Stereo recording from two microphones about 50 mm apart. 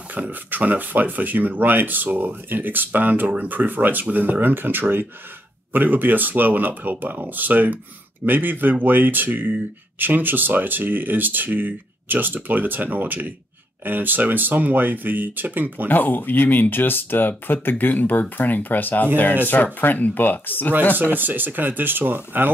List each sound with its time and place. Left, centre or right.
0.1 s speech: right
15.9 s speech: left
20.9 s speech: right